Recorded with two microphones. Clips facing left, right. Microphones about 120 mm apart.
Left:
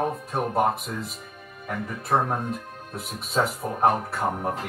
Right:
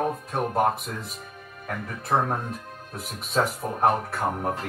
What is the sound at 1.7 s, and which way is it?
Speech, 5° left (ahead or behind).